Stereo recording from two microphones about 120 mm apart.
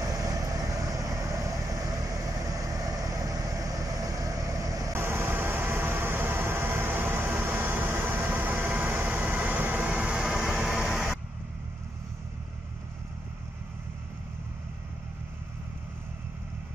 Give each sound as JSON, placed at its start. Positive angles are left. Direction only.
{"t": 0.0, "sound": "vehicle", "side_deg": -30}